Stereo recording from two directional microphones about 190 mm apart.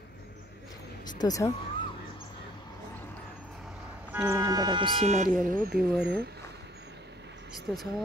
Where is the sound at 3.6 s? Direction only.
10° right (ahead or behind); by 6.3 s 60° right (ahead or behind).